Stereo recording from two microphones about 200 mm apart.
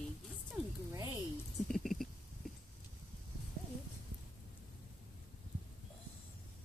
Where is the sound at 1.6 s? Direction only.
Centre (ahead or behind).